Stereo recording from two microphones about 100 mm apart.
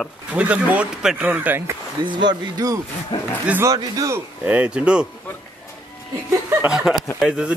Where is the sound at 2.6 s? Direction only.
35° right (ahead or behind).